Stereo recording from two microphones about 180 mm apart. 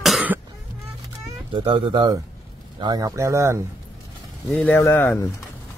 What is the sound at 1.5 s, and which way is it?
Speech, 25° right (ahead or behind).